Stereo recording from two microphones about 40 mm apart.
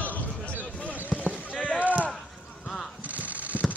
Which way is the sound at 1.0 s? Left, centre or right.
Left.